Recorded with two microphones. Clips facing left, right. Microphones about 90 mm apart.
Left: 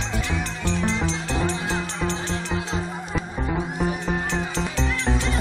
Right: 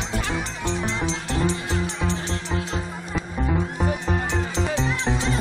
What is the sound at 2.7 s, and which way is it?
Music, centre (ahead or behind).